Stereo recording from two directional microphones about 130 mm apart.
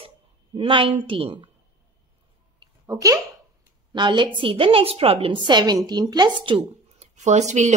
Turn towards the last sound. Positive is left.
turn(degrees=-65)  # may be behind; listen again after turning